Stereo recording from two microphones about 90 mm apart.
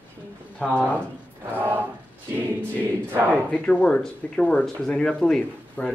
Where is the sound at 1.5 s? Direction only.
25° right (ahead or behind).